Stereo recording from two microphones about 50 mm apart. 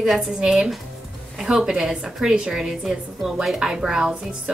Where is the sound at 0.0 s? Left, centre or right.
Centre.